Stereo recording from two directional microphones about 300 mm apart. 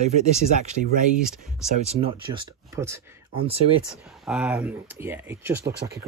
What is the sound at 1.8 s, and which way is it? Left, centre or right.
Speech, centre.